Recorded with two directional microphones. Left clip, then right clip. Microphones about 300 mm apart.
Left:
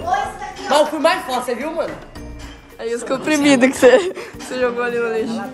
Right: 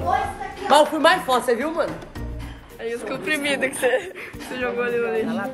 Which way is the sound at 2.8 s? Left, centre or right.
Centre.